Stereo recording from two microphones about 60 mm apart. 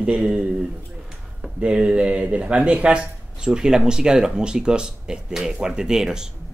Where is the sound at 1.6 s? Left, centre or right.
Centre.